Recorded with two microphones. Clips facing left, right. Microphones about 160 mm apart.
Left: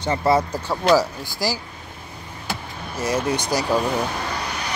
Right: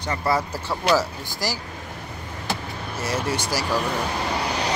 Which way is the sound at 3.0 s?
15° left (ahead or behind).